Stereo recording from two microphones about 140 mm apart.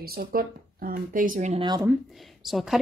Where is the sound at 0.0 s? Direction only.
90° right; by 1.5 s 75° right (ahead or behind).